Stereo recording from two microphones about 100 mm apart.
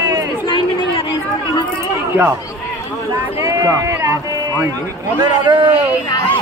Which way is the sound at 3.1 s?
35° right (ahead or behind).